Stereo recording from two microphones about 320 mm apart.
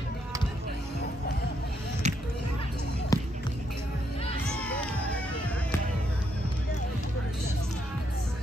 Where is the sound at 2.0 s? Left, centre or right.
Right.